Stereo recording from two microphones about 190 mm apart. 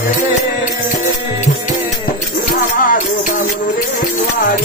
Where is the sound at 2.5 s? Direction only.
45° left (ahead or behind).